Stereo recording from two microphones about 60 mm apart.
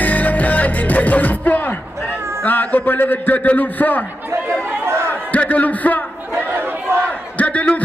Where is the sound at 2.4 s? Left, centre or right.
Left.